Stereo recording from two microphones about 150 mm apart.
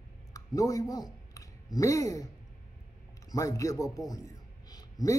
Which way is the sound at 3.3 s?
20° left (ahead or behind).